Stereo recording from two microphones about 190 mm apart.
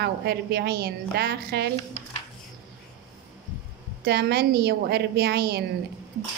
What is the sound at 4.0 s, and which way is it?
A woman's voice, 55° right (ahead or behind).